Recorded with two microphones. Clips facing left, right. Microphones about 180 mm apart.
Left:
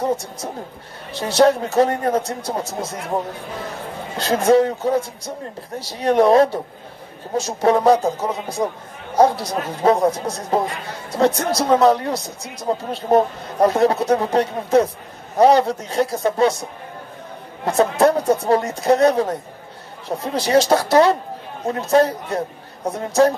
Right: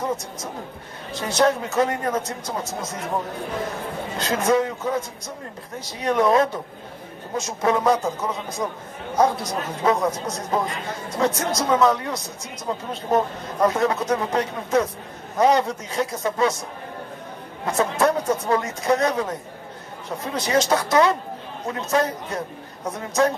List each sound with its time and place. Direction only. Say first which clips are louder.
0.0 s speech: left 5 dB; 30° left (ahead or behind)
4.2 s speech: left 6 dB; 30° left (ahead or behind)
17.6 s speech: left 5 dB; 30° left (ahead or behind)